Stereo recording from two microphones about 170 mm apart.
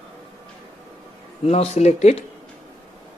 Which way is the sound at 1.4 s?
35° left (ahead or behind).